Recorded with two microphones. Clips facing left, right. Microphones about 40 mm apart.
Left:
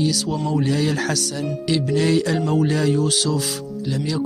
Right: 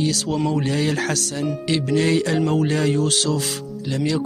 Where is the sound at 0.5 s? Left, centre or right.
Right.